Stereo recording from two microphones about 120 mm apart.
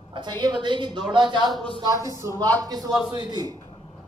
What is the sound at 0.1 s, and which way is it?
Speech, 40° right (ahead or behind).